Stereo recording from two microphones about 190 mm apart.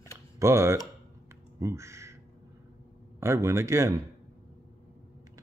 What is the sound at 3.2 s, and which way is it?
Speech, 15° right (ahead or behind).